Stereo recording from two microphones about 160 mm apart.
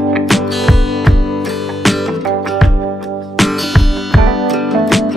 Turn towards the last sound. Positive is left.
turn(degrees=0)  # may be behind; listen again after turning